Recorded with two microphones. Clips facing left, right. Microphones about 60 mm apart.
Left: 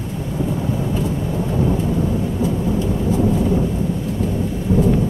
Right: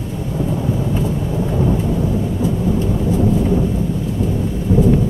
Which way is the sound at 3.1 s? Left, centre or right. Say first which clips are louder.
Right 2 dB; centre.